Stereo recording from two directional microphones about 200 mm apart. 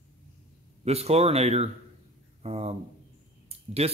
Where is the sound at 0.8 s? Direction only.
30° right (ahead or behind).